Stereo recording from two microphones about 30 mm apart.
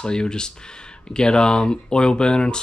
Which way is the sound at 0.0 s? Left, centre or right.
Left.